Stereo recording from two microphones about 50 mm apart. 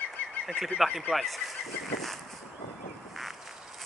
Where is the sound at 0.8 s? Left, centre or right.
Centre.